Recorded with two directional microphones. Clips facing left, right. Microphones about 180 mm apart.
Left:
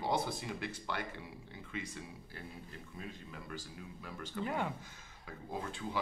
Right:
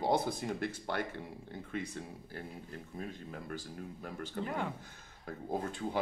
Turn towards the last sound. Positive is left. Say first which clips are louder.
# right 4 dB
turn(degrees=-45)  # may be behind; listen again after turning